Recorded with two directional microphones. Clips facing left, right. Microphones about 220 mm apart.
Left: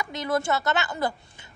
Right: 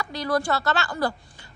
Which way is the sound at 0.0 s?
20° left (ahead or behind).